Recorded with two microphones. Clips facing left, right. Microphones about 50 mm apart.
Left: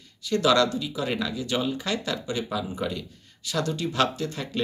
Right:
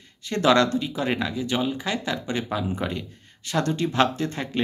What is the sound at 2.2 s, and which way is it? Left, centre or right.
Speech, right.